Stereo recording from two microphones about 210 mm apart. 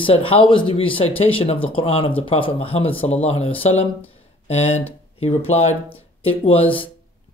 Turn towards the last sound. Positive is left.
turn(degrees=25)  # may be behind; listen again after turning